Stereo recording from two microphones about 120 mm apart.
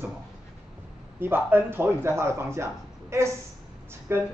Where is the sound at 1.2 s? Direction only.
15° right (ahead or behind).